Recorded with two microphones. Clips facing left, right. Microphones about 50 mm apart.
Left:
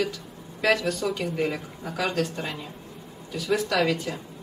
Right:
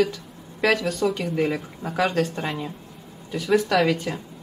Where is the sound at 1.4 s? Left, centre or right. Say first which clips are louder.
Right 3 dB; right.